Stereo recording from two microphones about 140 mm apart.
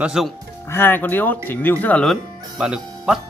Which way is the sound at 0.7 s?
15° left (ahead or behind).